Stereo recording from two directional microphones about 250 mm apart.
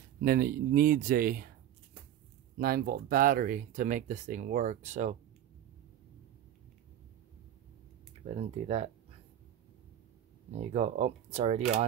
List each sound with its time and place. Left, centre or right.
0.2 s speech: right
2.5 s speech: right
8.3 s speech: right
10.5 s speech: right